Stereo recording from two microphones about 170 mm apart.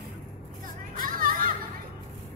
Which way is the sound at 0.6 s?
55° right (ahead or behind).